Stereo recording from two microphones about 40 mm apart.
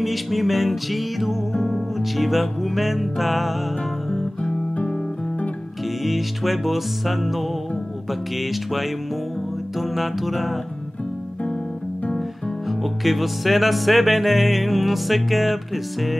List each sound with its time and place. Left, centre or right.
0.0 s music: centre
4.1 s guitar: centre
4.5 s guitar: left
6.0 s music: centre
12.6 s music: centre